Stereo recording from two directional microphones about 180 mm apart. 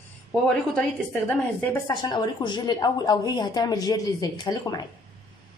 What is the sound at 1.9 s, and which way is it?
A woman's voice, 25° left (ahead or behind).